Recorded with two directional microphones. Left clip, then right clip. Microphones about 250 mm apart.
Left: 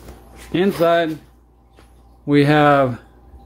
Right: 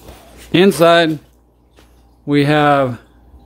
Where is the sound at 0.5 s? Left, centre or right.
Right.